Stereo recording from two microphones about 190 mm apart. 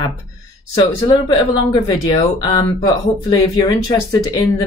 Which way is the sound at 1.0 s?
20° left (ahead or behind).